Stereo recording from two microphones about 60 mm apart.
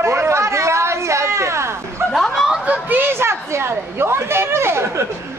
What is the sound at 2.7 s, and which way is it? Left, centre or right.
A woman's voice, right.